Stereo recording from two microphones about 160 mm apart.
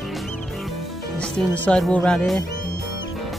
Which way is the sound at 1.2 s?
5° left (ahead or behind).